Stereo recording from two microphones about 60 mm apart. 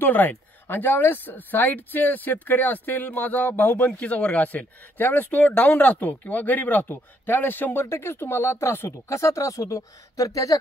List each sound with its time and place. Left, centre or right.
0.0 s speech: left